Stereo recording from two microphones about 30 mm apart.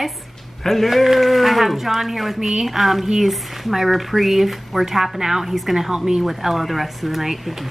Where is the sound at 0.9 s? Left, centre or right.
Centre.